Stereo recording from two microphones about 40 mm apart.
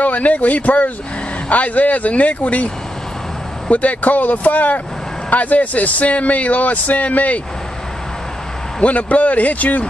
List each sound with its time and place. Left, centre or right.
0.0 s speech: left
3.7 s speech: left
8.8 s speech: left